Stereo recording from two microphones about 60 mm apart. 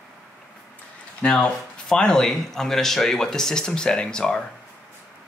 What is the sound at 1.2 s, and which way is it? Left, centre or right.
Speech, centre.